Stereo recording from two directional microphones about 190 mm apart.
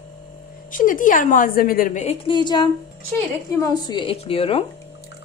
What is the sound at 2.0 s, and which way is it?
Speech, 25° left (ahead or behind).